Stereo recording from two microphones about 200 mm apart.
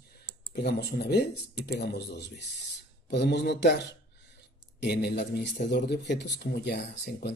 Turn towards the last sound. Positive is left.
turn(degrees=55)  # may be behind; listen again after turning